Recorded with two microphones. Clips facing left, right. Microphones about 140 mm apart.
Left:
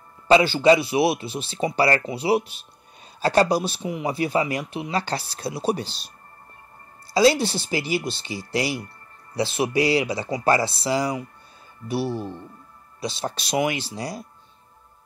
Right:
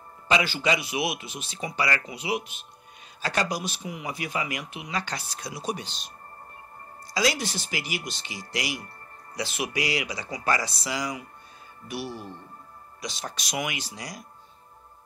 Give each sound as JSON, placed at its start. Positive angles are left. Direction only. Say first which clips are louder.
{"t": 0.3, "sound": "speech", "louder": "left 9 dB", "side_deg": 30}
{"t": 7.2, "sound": "speech", "louder": "left 9 dB", "side_deg": 30}